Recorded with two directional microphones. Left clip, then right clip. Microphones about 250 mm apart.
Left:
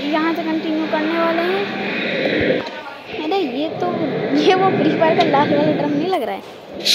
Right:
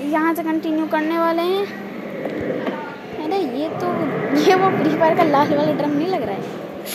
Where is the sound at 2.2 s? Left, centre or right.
Right.